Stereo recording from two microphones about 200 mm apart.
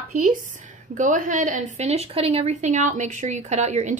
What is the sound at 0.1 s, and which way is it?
A woman's voice, 40° right (ahead or behind).